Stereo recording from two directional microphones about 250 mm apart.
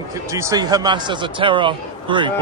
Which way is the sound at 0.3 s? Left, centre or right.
Centre.